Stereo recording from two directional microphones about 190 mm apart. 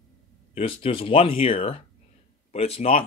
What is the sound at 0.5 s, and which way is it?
Speech, 30° left (ahead or behind).